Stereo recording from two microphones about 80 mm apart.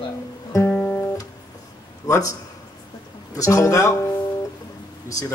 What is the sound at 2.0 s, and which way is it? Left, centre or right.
A man's voice, left.